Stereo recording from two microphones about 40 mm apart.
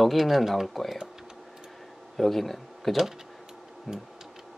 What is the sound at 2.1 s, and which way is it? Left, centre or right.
Speech, centre.